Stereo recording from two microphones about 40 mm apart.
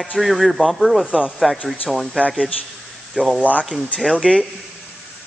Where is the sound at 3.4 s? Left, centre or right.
Left.